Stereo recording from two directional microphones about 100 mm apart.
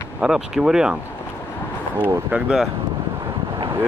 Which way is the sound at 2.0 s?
20° right (ahead or behind).